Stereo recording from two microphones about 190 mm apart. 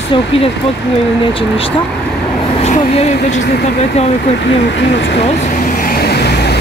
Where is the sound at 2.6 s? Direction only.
35° left (ahead or behind).